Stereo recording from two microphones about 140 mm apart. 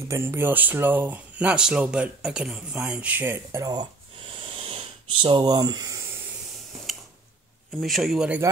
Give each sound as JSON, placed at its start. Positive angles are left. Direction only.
{"t": 0.1, "sound": "speech", "side_deg": -20}
{"t": 4.3, "sound": "a sound", "side_deg": -40}
{"t": 7.8, "sound": "speech", "side_deg": 0}